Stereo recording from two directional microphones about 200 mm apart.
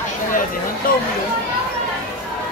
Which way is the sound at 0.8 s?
45° left (ahead or behind).